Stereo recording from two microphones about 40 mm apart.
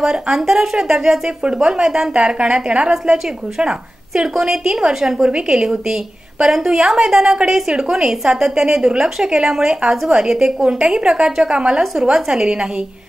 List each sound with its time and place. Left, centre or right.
0.0 s a woman's voice: centre
2.3 s a woman's voice: right
2.9 s a woman's voice: centre
12.0 s a woman's voice: centre